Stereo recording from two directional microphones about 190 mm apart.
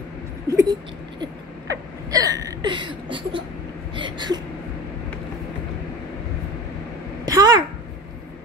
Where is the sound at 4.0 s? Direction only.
25° right (ahead or behind).